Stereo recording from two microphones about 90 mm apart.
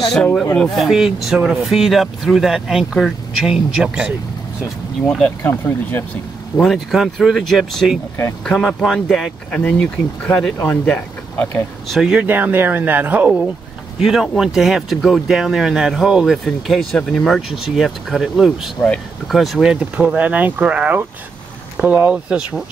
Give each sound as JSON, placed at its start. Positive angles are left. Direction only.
{"t": 0.1, "sound": "speech", "side_deg": 10}
{"t": 5.0, "sound": "speech", "side_deg": 15}
{"t": 6.6, "sound": "speech", "side_deg": 0}
{"t": 9.5, "sound": "speech", "side_deg": 10}
{"t": 11.9, "sound": "speech", "side_deg": -5}
{"t": 12.2, "sound": "speech", "side_deg": -20}
{"t": 14.0, "sound": "speech", "side_deg": 0}
{"t": 17.5, "sound": "speech", "side_deg": -5}
{"t": 19.7, "sound": "speech", "side_deg": -15}